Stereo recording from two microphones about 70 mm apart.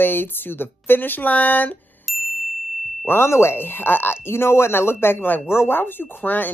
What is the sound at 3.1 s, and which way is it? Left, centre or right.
Speech, left.